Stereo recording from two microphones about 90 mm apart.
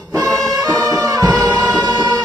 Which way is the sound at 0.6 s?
45° right (ahead or behind).